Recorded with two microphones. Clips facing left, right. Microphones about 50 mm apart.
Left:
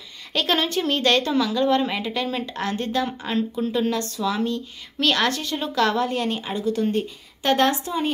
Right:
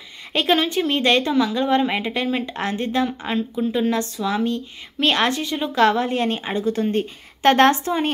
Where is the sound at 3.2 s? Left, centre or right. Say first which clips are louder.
Right 1 dB; centre.